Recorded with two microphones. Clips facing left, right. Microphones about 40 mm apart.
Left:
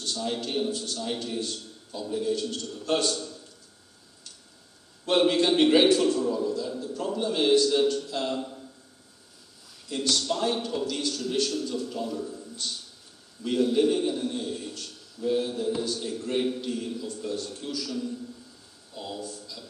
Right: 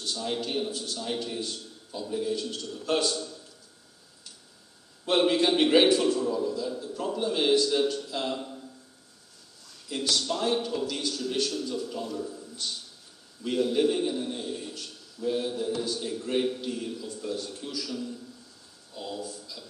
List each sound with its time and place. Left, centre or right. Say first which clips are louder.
0.0 s a man's voice: left 1 dB; centre
5.0 s a man's voice: left 1 dB; centre
6.8 s a man's voice: left 1 dB; centre
7.1 s a man's voice: left 1 dB; centre
9.8 s a man's voice: left 1 dB; centre
14.5 s a sound: left 1 dB; centre
15.1 s a man's voice: left 2 dB; centre
19.4 s a sound: left 1 dB; centre